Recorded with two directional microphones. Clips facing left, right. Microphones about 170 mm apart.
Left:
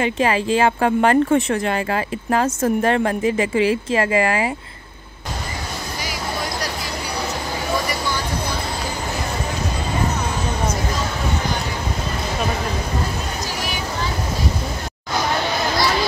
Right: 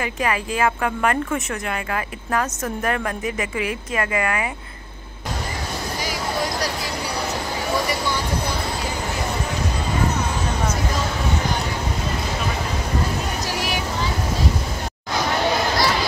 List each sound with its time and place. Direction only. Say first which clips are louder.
0.0 s a woman's voice: left 5 dB; 25° left (ahead or behind)